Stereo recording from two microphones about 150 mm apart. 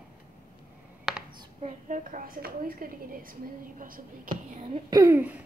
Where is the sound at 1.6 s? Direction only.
55° right (ahead or behind).